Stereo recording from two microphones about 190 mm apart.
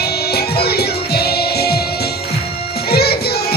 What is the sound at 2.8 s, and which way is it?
Music, 55° left (ahead or behind).